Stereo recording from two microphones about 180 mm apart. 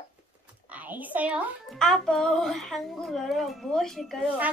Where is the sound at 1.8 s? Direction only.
5° left (ahead or behind).